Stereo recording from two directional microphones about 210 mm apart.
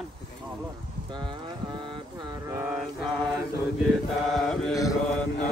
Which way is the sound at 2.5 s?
10° right (ahead or behind).